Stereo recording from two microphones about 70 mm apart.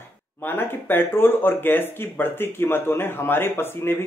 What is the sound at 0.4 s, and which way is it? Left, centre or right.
Speech, left.